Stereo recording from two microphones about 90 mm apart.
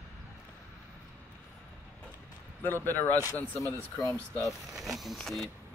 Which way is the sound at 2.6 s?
20° left (ahead or behind).